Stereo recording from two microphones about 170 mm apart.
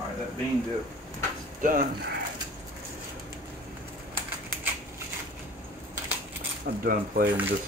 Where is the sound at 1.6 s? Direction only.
50° right (ahead or behind).